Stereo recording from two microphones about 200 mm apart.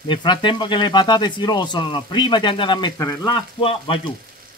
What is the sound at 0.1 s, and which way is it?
Speech, 25° left (ahead or behind).